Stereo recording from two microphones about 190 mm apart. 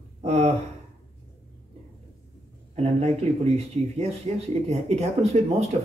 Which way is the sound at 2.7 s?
35° right (ahead or behind).